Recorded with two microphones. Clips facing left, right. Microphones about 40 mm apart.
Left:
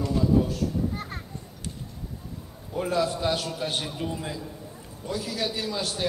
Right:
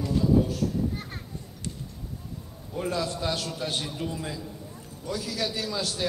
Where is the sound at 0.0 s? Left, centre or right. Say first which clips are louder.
Even; centre.